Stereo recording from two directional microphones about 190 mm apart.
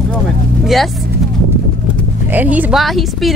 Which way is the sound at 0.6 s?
Centre (ahead or behind).